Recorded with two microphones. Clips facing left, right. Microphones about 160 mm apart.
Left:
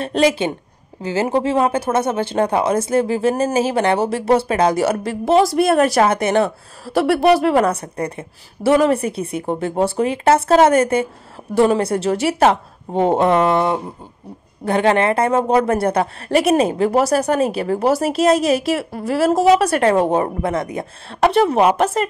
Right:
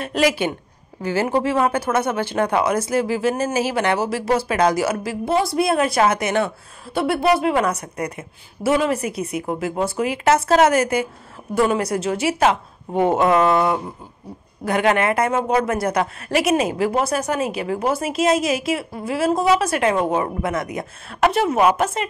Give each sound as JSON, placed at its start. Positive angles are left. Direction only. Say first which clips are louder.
{"t": 0.0, "sound": "speech", "louder": "left 3 dB", "side_deg": 30}
{"t": 5.0, "sound": "a woman's voice", "louder": "left 6 dB", "side_deg": 90}
{"t": 5.9, "sound": "speech", "louder": "left 3 dB", "side_deg": 35}
{"t": 7.0, "sound": "a woman's voice", "louder": "left 4 dB", "side_deg": 90}
{"t": 7.5, "sound": "speech", "louder": "left 4 dB", "side_deg": 35}
{"t": 18.7, "sound": "a woman's voice", "louder": "left 3 dB", "side_deg": 75}
{"t": 19.7, "sound": "speech", "louder": "left 4 dB", "side_deg": 35}